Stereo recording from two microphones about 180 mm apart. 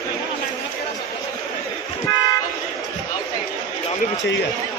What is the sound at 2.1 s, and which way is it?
Toot, 20° left (ahead or behind).